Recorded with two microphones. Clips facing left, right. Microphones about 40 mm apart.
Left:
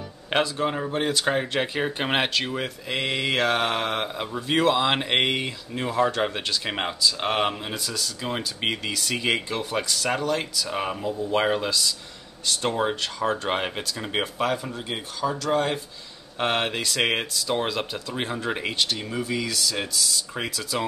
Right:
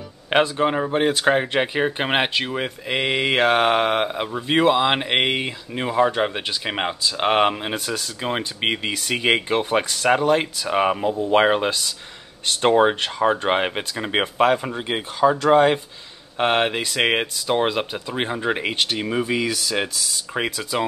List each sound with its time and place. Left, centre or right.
0.3 s speech: right
7.1 s speech: right
16.3 s speech: right
18.8 s speech: right